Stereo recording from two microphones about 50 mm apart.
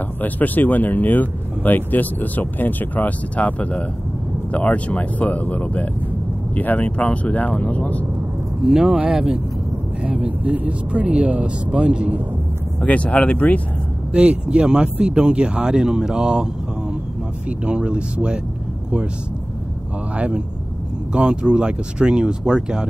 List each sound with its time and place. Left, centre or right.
0.2 s speech: left
8.6 s speech: centre
10.0 s speech: right
12.8 s speech: left
14.1 s speech: right
17.5 s speech: right
20.2 s speech: right